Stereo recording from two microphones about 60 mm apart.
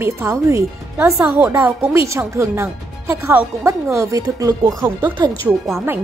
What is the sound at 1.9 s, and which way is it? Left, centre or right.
A woman's voice, right.